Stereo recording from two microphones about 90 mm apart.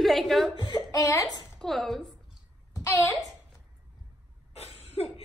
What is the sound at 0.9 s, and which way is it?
Speech, 40° left (ahead or behind).